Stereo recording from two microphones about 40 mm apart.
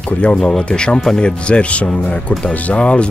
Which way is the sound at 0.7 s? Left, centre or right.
Left.